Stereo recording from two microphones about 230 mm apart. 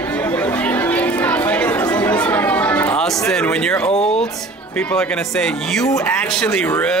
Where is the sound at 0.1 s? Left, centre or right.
Centre.